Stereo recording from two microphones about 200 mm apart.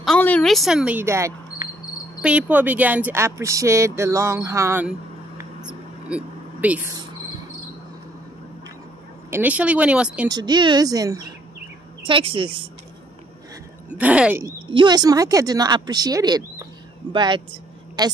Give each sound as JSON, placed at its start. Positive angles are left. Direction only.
{"t": 0.0, "sound": "speech", "side_deg": 5}
{"t": 5.6, "sound": "a sound", "side_deg": -5}
{"t": 9.3, "sound": "speech", "side_deg": -10}
{"t": 10.2, "sound": "speech", "side_deg": -20}
{"t": 13.8, "sound": "speech", "side_deg": -5}
{"t": 14.7, "sound": "speech", "side_deg": -25}